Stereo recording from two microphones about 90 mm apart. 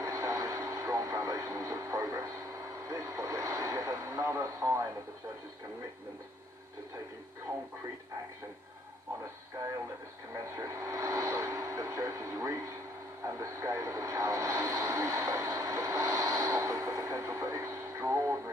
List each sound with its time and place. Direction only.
0.0 s vehicle: 40° right (ahead or behind)
2.9 s radio: 35° right (ahead or behind)
10.5 s vehicle: 35° right (ahead or behind)